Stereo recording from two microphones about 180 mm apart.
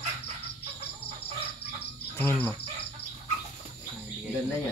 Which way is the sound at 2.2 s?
10° left (ahead or behind).